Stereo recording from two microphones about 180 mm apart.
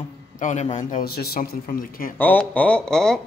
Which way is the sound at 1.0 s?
60° left (ahead or behind).